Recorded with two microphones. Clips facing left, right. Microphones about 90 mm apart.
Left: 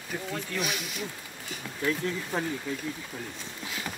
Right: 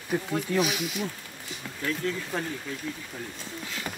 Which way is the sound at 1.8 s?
15° left (ahead or behind).